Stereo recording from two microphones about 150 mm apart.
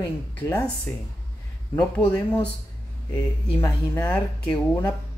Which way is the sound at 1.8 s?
10° left (ahead or behind).